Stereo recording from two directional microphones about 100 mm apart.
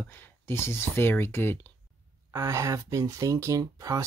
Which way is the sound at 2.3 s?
30° right (ahead or behind).